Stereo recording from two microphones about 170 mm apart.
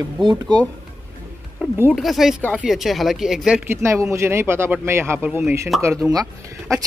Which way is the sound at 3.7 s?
15° right (ahead or behind).